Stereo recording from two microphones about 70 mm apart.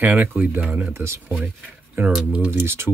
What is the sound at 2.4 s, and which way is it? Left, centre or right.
Speech, right.